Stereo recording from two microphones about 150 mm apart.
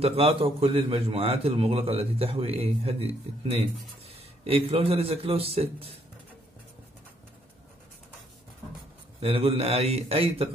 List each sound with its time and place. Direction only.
0.0 s a man's voice: 40° right (ahead or behind)
9.2 s a man's voice: 40° right (ahead or behind)